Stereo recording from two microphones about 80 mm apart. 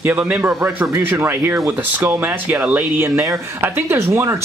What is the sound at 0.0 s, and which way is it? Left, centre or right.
A man's voice, right.